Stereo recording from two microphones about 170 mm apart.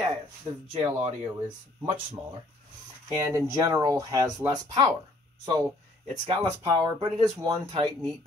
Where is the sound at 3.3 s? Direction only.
20° right (ahead or behind).